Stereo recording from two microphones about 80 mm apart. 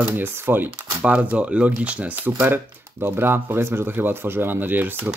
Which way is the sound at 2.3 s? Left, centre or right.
Right.